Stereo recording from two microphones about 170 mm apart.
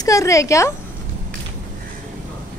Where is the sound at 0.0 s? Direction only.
20° left (ahead or behind).